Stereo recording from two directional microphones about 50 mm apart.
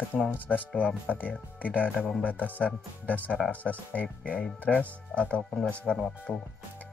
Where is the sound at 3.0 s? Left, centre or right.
Left.